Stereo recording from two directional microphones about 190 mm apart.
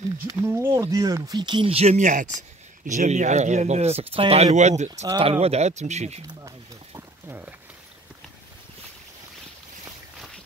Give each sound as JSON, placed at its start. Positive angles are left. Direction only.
{"t": 0.5, "sound": "speech", "side_deg": -10}
{"t": 5.0, "sound": "speech", "side_deg": -25}
{"t": 6.2, "sound": "a sound", "side_deg": -20}